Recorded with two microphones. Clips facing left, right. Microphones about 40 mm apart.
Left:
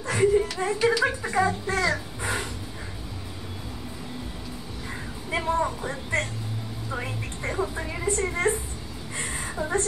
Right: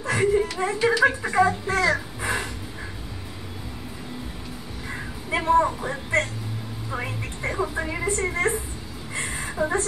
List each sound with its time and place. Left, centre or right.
0.0 s speech: centre
1.7 s a sound: centre
5.3 s speech: right
6.9 s music: centre
7.9 s a woman's voice: right
9.6 s speech: centre